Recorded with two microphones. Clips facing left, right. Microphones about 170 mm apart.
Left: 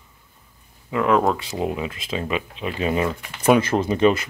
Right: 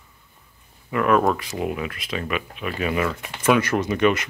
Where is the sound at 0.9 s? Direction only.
15° left (ahead or behind).